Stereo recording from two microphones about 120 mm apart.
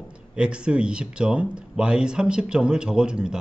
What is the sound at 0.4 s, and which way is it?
A man's voice, 10° right (ahead or behind).